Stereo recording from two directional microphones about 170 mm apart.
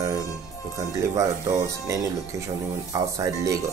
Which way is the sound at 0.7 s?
20° right (ahead or behind).